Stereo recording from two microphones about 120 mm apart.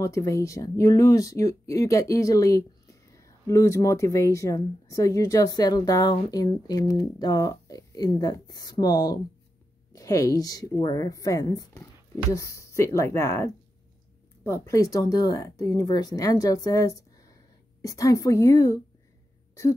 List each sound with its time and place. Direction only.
0.0 s speech: 25° left (ahead or behind)